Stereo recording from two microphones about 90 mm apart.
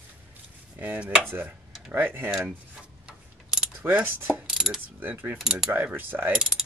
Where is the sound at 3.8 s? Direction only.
20° right (ahead or behind).